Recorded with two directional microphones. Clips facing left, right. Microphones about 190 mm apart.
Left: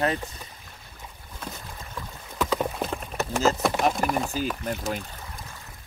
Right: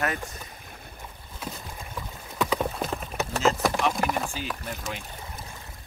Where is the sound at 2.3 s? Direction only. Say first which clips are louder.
Left 1 dB; centre (ahead or behind).